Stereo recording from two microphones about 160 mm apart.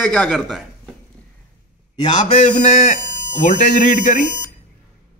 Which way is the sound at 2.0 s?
40° left (ahead or behind).